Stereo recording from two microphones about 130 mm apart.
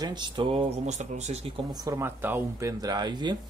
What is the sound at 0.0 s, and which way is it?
Speech, 35° right (ahead or behind).